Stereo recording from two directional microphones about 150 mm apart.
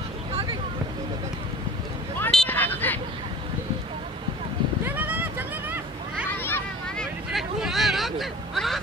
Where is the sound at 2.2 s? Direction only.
10° left (ahead or behind).